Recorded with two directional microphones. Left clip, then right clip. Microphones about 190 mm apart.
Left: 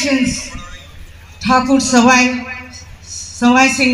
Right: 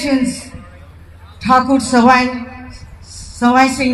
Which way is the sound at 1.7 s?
40° right (ahead or behind).